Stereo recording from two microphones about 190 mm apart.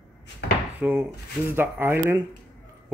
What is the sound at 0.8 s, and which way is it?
Speech, 10° right (ahead or behind).